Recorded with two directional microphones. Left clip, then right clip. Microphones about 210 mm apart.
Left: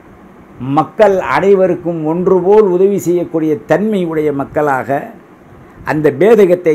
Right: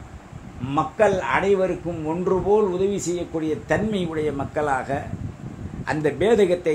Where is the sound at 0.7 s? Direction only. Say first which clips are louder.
Left 10 dB; 20° left (ahead or behind).